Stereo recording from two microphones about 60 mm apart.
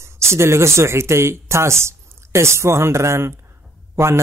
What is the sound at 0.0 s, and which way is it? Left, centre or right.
A man's voice, right.